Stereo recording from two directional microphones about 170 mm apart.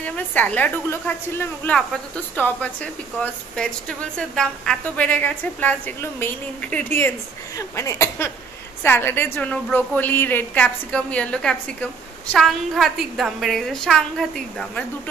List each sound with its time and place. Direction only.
0.0 s a woman's voice: 10° left (ahead or behind)